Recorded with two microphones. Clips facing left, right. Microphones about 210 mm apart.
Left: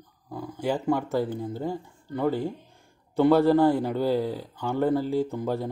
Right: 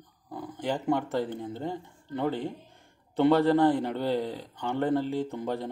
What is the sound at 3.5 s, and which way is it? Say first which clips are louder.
Speech: left 2 dB; 5° left (ahead or behind).